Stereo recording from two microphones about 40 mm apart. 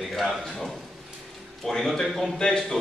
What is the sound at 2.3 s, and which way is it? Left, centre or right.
Speech, centre.